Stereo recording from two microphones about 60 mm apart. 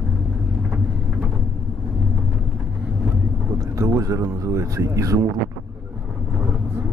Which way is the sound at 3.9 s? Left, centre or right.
Right.